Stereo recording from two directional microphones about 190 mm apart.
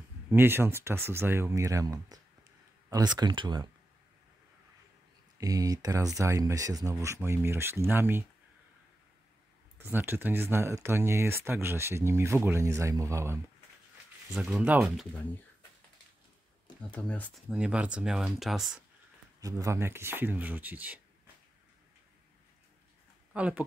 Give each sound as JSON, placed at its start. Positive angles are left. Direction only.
{"t": 0.3, "sound": "speech", "side_deg": -10}
{"t": 5.4, "sound": "speech", "side_deg": -20}
{"t": 9.8, "sound": "speech", "side_deg": -10}
{"t": 16.9, "sound": "speech", "side_deg": 10}
{"t": 17.5, "sound": "speech", "side_deg": -5}
{"t": 19.4, "sound": "speech", "side_deg": -15}
{"t": 23.3, "sound": "speech", "side_deg": -5}